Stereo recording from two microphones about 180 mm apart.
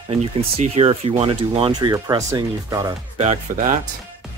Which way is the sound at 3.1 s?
40° right (ahead or behind).